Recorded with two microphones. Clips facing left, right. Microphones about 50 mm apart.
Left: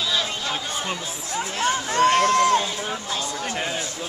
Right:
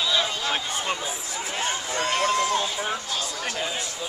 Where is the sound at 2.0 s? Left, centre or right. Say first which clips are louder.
Left 6 dB; left.